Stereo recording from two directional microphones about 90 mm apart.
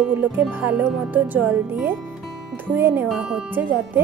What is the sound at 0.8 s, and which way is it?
Speech, 5° right (ahead or behind).